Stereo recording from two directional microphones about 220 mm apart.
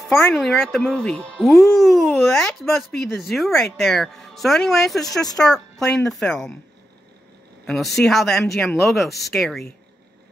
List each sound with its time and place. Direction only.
0.0 s speech: centre (ahead or behind)
7.6 s speech: centre (ahead or behind)